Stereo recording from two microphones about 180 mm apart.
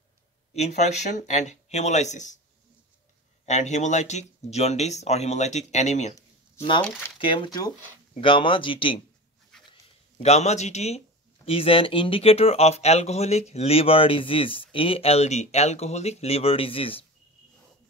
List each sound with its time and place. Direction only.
0.6 s speech: 40° left (ahead or behind)
3.4 s speech: 40° left (ahead or behind)
7.2 s speech: 30° left (ahead or behind)
9.7 s a sound: 35° left (ahead or behind)
11.4 s speech: 30° left (ahead or behind)